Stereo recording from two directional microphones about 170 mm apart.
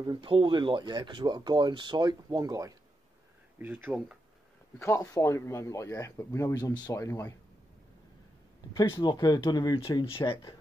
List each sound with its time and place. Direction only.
0.0 s speech: 25° right (ahead or behind); by 3.9 s 10° right (ahead or behind)
4.7 s speech: 15° left (ahead or behind)
8.7 s speech: 25° left (ahead or behind)